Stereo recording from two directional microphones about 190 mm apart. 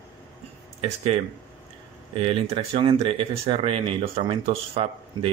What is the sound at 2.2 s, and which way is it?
Speech, 30° right (ahead or behind).